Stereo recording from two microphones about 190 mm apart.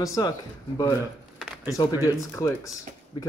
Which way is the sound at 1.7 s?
15° left (ahead or behind).